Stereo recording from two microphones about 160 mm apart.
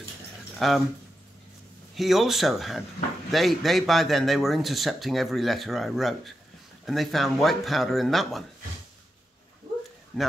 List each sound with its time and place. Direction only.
0.6 s speech: centre (ahead or behind)
2.0 s speech: centre (ahead or behind)
10.1 s speech: centre (ahead or behind)